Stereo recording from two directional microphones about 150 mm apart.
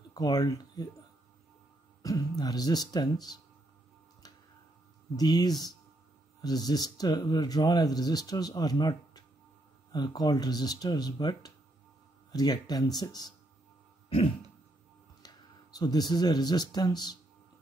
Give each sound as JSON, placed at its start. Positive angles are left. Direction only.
{"t": 0.1, "sound": "speech", "side_deg": 25}
{"t": 2.0, "sound": "speech", "side_deg": 25}
{"t": 5.1, "sound": "speech", "side_deg": 25}
{"t": 14.0, "sound": "a sound", "side_deg": 40}
{"t": 15.2, "sound": "speech", "side_deg": 25}